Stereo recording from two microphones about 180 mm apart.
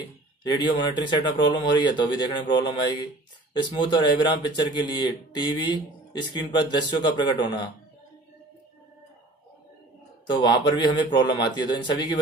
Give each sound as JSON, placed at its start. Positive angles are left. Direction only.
{"t": 0.4, "sound": "speech", "side_deg": 25}
{"t": 3.8, "sound": "speech", "side_deg": 25}
{"t": 10.2, "sound": "speech", "side_deg": 25}